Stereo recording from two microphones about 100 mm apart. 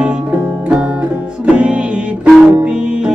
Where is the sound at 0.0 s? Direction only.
15° right (ahead or behind).